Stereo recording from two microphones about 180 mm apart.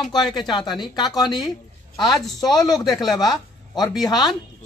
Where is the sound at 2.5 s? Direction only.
20° left (ahead or behind).